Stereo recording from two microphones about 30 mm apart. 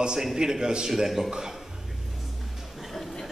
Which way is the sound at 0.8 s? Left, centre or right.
Centre.